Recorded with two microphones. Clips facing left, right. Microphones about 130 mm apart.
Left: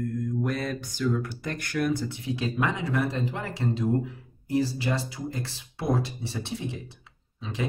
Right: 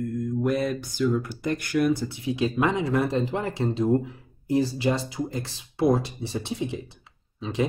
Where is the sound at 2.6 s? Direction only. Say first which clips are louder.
Right 3 dB; 25° right (ahead or behind).